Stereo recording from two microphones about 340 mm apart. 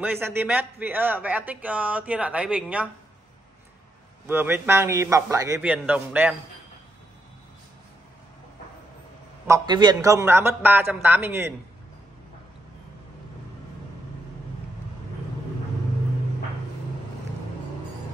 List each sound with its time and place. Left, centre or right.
0.0 s a man's voice: centre
4.3 s a man's voice: centre
9.5 s a man's voice: centre